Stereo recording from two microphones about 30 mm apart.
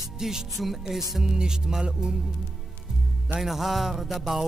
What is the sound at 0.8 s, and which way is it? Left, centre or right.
Speech, centre.